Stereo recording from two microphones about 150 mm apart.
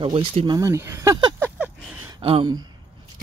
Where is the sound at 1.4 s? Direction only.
10° right (ahead or behind).